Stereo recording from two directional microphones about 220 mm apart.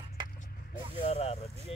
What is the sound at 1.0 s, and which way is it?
Speech, 30° left (ahead or behind).